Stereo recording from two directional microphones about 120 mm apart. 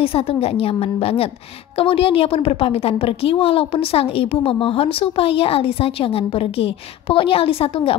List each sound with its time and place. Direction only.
0.0 s a woman's voice: 55° left (ahead or behind)